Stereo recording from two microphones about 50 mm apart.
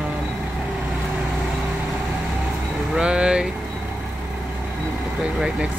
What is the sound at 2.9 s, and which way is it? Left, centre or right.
Speech, centre.